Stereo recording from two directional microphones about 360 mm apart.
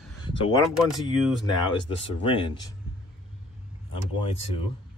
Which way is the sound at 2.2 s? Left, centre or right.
Centre.